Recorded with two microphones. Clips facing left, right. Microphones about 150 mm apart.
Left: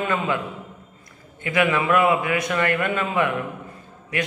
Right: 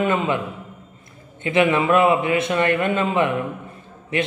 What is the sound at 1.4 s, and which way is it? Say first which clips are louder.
A man's voice: right 3 dB; 25° right (ahead or behind).